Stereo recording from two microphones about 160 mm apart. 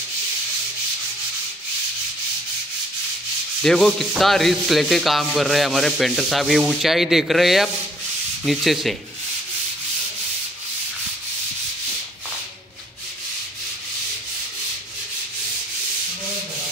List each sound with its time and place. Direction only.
3.6 s sanding: centre (ahead or behind)